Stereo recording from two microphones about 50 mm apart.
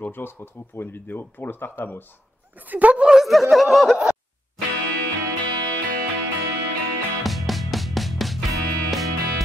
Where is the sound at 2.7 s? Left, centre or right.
Right.